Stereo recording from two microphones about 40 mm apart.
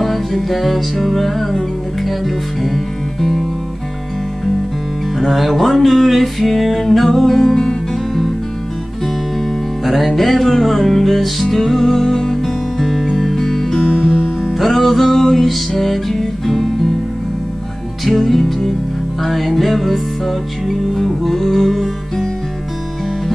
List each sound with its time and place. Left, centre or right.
0.0 s music: centre
5.1 s music: centre
9.8 s music: centre
18.0 s music: centre